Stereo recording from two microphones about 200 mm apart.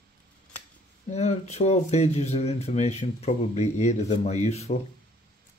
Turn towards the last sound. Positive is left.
turn(degrees=35)  # may be behind; listen again after turning